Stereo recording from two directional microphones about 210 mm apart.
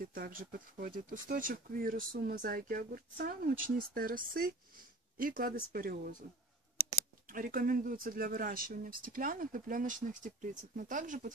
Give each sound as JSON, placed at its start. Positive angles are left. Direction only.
{"t": 0.0, "sound": "speech", "side_deg": -45}
{"t": 7.2, "sound": "speech", "side_deg": -40}